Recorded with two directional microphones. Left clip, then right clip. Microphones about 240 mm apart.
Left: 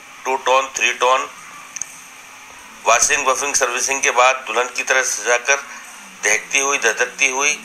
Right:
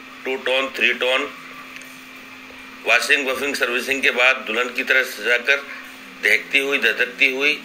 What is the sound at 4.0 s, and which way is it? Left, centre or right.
Speech, centre.